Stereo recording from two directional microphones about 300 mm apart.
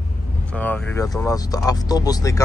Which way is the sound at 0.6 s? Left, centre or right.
Centre.